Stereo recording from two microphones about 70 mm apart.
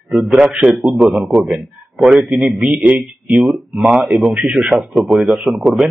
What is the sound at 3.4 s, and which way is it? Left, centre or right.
Speech, centre.